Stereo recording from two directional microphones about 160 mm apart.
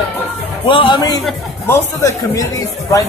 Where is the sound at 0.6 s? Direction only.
30° left (ahead or behind).